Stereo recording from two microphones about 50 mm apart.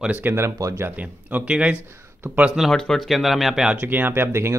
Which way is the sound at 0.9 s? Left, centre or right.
Right.